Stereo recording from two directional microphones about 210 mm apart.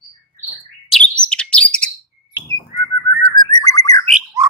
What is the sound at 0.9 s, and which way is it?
Bird, 5° left (ahead or behind).